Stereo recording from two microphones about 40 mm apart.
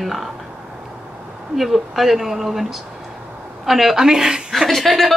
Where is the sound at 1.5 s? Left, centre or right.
Centre.